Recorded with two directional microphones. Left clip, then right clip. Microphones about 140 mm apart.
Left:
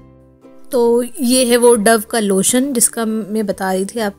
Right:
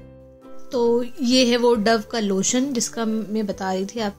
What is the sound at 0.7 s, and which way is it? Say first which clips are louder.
Speech: left 6 dB; 60° left (ahead or behind).